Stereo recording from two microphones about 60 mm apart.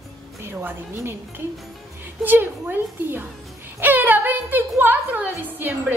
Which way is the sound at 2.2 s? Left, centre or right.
Right.